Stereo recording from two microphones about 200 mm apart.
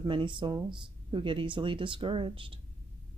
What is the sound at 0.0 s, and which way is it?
Speech, 25° right (ahead or behind).